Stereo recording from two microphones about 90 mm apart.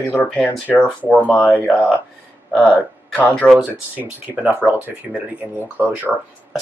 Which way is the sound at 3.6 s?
20° right (ahead or behind).